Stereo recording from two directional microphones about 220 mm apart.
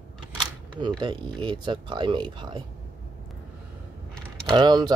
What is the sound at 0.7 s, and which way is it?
Speech, 20° right (ahead or behind).